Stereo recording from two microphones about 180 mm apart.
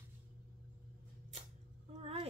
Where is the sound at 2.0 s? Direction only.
35° right (ahead or behind).